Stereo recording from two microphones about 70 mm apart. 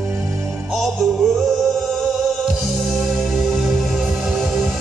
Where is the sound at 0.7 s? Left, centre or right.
Centre.